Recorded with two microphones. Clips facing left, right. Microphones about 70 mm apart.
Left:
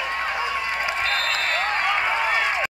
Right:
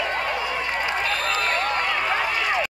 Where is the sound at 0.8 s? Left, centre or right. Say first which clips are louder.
Even; left.